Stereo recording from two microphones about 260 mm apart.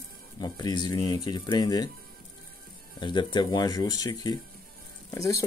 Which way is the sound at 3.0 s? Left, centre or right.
Centre.